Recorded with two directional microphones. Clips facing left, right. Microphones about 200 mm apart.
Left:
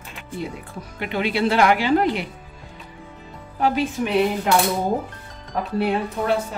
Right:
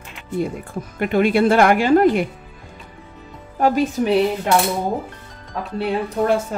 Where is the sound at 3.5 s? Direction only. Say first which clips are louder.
Right 4 dB; 45° right (ahead or behind).